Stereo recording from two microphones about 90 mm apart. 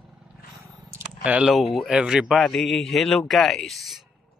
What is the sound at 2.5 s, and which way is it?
A man's voice, 5° left (ahead or behind).